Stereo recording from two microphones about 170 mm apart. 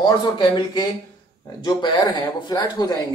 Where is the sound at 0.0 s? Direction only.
25° left (ahead or behind).